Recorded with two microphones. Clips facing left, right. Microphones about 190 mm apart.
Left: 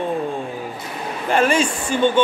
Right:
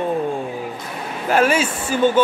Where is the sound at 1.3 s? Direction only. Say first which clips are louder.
Right 1 dB; 5° right (ahead or behind).